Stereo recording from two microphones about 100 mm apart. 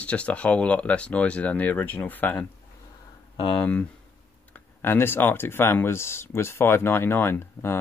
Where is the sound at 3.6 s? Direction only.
15° left (ahead or behind).